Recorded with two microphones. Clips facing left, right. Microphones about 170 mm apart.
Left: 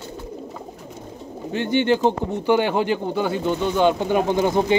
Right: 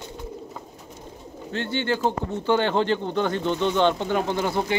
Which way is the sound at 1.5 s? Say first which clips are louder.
Left 6 dB; 15° left (ahead or behind).